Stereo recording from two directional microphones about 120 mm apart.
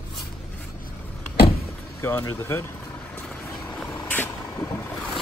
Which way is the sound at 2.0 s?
20° left (ahead or behind).